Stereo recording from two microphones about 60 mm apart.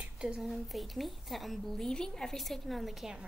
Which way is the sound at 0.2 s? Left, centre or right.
Centre.